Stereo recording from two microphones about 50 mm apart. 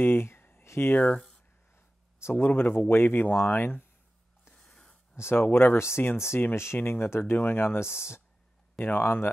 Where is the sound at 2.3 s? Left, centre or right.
Left.